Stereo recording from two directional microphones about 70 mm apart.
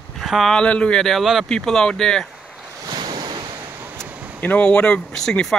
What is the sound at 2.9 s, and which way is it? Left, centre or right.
Waves, right.